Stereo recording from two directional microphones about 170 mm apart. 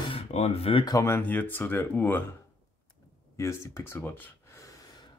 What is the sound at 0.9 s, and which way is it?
Speech, 15° left (ahead or behind).